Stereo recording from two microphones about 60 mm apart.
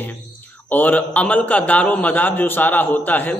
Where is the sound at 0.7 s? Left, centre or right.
Left.